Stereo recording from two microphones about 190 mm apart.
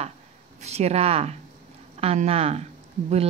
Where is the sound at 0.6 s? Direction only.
35° right (ahead or behind).